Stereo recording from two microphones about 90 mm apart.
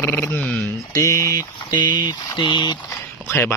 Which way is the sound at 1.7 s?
55° left (ahead or behind).